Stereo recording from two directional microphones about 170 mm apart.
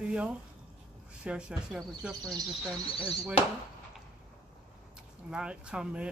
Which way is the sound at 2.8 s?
30° left (ahead or behind).